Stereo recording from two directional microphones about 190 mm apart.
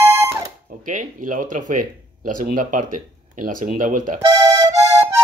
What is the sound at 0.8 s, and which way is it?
Speech, 45° right (ahead or behind).